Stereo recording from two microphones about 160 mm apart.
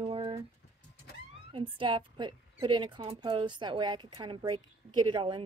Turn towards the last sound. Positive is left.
turn(degrees=-30)  # may be behind; listen again after turning